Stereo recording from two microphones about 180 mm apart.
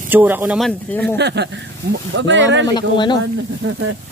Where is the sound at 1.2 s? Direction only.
70° right (ahead or behind).